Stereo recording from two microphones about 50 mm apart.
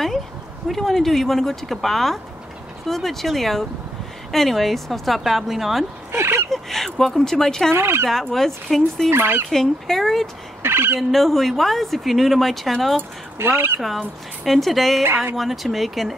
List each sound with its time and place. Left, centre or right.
0.7 s speech: centre
6.1 s fowl: right
6.5 s speech: centre
7.7 s fowl: right
8.1 s speech: centre
9.1 s speech: right
9.5 s speech: centre
10.6 s speech: right
11.0 s speech: centre
13.4 s speech: right
13.7 s speech: centre